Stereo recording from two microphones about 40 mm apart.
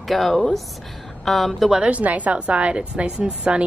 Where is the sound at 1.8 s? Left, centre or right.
Right.